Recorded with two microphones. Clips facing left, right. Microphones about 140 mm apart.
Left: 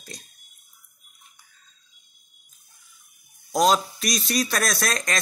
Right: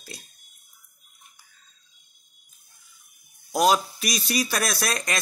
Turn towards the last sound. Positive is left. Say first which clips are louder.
# left 1 dB
turn(degrees=-5)  # may be behind; listen again after turning